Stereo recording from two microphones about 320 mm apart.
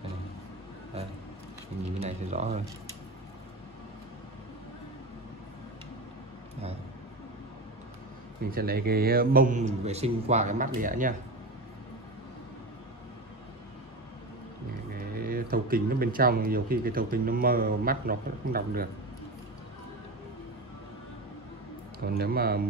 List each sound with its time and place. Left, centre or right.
2.0 s speech: right
8.5 s speech: right
15.1 s speech: right
22.1 s speech: right